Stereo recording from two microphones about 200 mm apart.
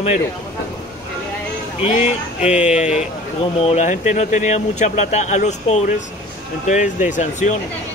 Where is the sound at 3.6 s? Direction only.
35° left (ahead or behind).